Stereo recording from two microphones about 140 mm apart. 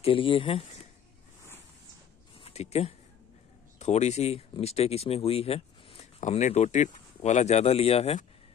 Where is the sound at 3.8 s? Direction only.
55° left (ahead or behind).